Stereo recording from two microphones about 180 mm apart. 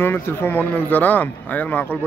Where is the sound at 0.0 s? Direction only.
10° left (ahead or behind).